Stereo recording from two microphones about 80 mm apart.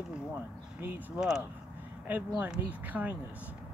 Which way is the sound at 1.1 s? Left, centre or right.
Centre.